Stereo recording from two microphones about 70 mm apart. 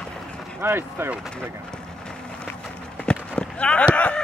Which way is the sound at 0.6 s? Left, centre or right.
Right.